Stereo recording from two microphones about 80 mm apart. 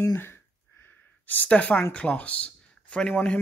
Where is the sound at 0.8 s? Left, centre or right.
Left.